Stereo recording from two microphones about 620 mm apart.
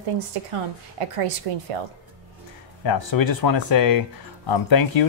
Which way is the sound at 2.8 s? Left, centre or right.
Left.